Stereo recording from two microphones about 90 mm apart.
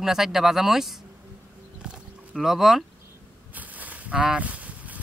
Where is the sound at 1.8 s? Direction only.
5° right (ahead or behind).